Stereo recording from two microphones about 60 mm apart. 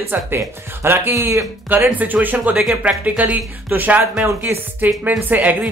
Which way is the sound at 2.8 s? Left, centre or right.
Right.